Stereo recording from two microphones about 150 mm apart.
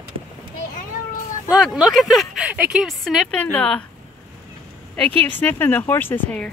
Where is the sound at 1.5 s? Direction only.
Centre (ahead or behind).